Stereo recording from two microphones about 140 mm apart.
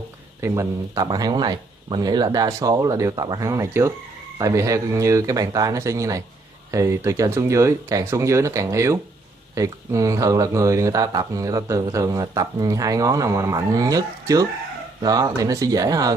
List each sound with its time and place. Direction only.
0.4 s speech: 20° right (ahead or behind)